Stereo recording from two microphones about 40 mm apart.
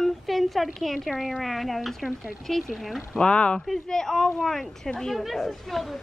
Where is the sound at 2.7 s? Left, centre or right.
Centre.